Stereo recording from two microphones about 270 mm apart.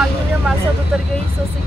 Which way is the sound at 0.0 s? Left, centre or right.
Centre.